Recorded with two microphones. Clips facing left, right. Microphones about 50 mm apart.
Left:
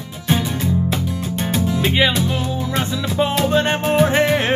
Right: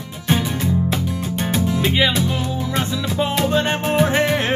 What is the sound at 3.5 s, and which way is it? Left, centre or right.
Music, left.